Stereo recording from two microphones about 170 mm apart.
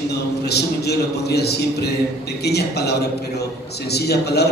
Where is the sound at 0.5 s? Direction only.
75° left (ahead or behind).